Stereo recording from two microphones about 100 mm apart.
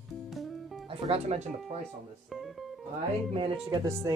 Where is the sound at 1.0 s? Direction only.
90° right.